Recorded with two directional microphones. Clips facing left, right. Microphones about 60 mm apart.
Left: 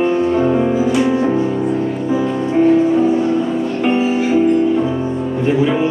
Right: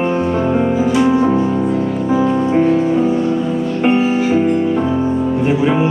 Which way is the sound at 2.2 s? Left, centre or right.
Centre.